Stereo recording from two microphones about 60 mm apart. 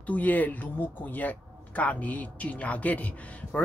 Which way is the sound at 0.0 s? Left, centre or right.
Left.